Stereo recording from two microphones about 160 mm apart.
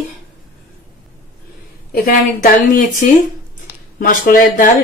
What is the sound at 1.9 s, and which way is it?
Speech, 65° left (ahead or behind).